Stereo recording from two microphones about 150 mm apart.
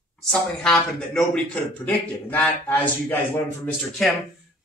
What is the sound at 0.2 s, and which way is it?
A man's voice, 5° left (ahead or behind).